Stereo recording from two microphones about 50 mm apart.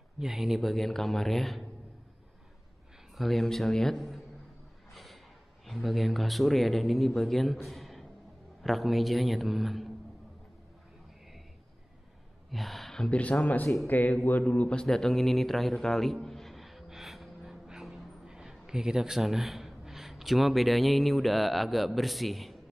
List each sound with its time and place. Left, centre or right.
0.2 s speech: centre
3.2 s speech: centre
4.9 s snort: centre
5.7 s speech: centre
12.4 s a sound: centre
13.1 s speech: left
13.8 s speech: left
14.7 s music: centre
18.2 s a man's voice: centre